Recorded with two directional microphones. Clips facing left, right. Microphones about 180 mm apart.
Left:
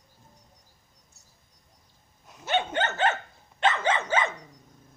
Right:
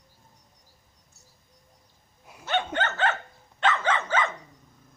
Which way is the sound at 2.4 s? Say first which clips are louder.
Left 1 dB; 15° left (ahead or behind).